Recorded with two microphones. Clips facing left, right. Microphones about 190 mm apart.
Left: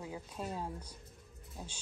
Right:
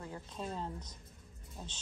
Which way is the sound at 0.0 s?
10° left (ahead or behind).